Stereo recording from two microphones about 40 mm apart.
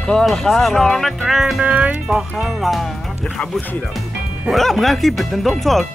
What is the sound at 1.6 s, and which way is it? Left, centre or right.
Speech, right.